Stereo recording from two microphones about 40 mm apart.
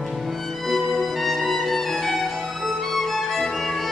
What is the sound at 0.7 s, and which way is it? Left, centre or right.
Music, centre.